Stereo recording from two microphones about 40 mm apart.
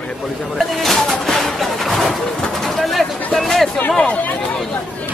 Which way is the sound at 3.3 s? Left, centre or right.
Centre.